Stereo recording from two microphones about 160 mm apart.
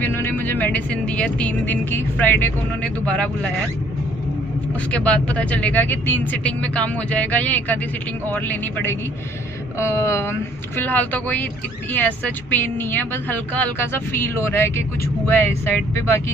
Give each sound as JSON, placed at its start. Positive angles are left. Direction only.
{"t": 0.1, "sound": "speech", "side_deg": 15}
{"t": 4.9, "sound": "speech", "side_deg": 10}